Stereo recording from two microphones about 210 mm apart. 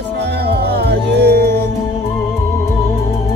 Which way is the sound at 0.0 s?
50° right (ahead or behind).